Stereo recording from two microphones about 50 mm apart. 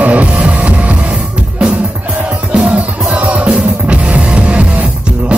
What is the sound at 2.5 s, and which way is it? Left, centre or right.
Music, right.